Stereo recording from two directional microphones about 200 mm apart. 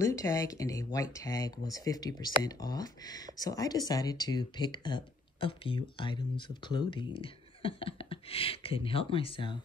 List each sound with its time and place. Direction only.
0.0 s speech: 15° left (ahead or behind)